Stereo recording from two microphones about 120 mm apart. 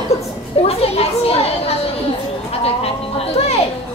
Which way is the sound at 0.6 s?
55° left (ahead or behind).